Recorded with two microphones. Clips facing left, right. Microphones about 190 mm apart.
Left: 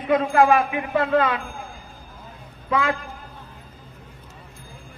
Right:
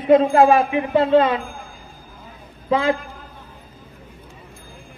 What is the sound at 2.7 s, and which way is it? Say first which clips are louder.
Speech: right 4 dB; 30° right (ahead or behind).